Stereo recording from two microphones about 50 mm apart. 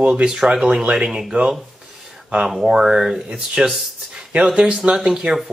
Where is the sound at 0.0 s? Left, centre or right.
Centre.